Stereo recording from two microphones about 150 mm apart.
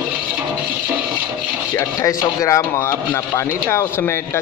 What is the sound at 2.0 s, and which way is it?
A man's voice, 20° left (ahead or behind).